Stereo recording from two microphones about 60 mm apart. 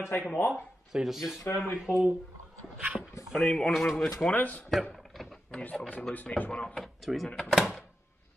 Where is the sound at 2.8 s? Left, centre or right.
Centre.